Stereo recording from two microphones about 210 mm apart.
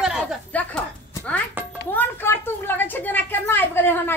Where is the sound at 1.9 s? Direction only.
10° left (ahead or behind).